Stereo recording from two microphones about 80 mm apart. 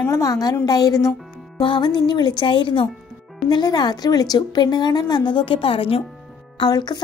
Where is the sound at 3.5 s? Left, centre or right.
Left.